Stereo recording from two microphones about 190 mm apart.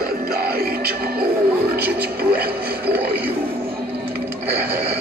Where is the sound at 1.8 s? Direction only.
55° right (ahead or behind).